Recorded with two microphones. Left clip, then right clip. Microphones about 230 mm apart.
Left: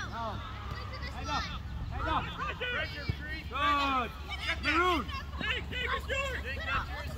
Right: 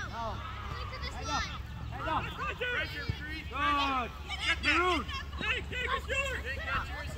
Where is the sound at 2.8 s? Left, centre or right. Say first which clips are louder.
Right 1 dB; right.